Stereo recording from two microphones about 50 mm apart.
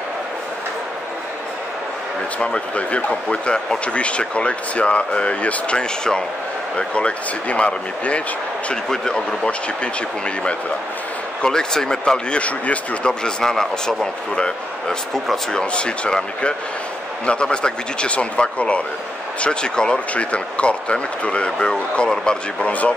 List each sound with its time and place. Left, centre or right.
2.3 s speech: left
8.8 s speech: centre
11.4 s speech: centre
12.1 s speech: left
13.2 s speech: centre
22.7 s speech: left